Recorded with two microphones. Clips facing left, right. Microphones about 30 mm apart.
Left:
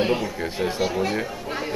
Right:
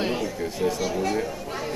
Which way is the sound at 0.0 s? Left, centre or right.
Centre.